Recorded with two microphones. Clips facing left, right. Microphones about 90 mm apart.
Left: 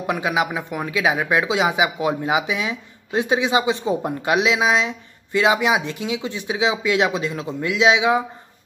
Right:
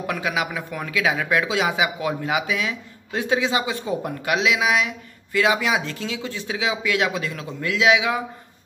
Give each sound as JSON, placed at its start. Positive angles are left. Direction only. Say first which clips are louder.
{"t": 0.0, "sound": "speech", "louder": "left 3 dB", "side_deg": 20}